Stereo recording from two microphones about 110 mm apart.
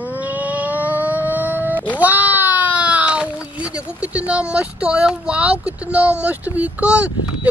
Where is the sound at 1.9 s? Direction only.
15° right (ahead or behind).